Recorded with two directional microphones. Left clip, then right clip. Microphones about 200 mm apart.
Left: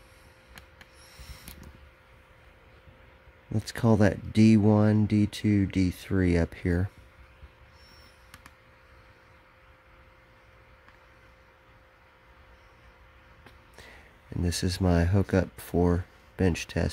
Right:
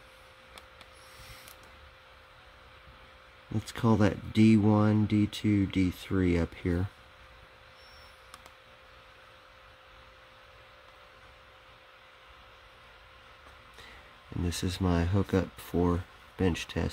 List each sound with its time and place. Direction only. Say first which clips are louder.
1.2 s mechanisms: even; 15° left (ahead or behind)
3.5 s speech: left 3 dB; 20° left (ahead or behind)
14.4 s speech: left 3 dB; 20° left (ahead or behind)